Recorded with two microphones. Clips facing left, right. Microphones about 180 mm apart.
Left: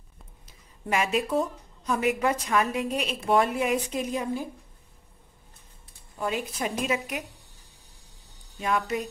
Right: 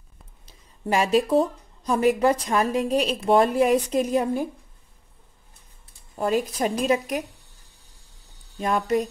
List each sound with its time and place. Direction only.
0.5 s a woman's voice: 30° right (ahead or behind)
4.2 s a woman's voice: 55° right (ahead or behind)
6.1 s a woman's voice: 40° right (ahead or behind)
8.5 s a woman's voice: 40° right (ahead or behind)